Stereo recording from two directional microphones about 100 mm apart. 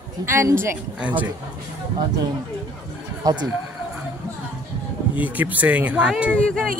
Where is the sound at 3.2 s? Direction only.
45° right (ahead or behind).